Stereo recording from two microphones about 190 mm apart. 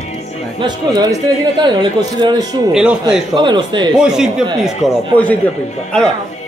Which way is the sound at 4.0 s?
5° right (ahead or behind).